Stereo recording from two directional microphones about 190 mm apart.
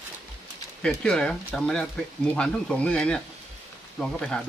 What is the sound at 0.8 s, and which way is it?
Speech, 5° left (ahead or behind).